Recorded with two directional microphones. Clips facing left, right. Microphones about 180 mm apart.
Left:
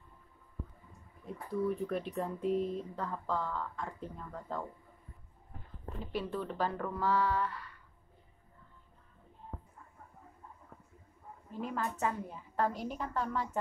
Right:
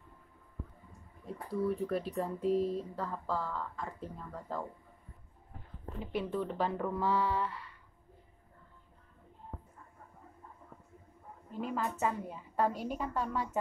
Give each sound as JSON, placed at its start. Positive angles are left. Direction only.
{"t": 1.2, "sound": "a woman's voice", "side_deg": 0}
{"t": 2.6, "sound": "a sound", "side_deg": -35}
{"t": 3.0, "sound": "a woman's voice", "side_deg": -5}
{"t": 6.1, "sound": "speech", "side_deg": -20}
{"t": 11.6, "sound": "a woman's voice", "side_deg": -5}